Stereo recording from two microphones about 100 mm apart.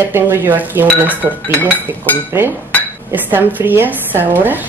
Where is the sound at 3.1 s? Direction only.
20° right (ahead or behind).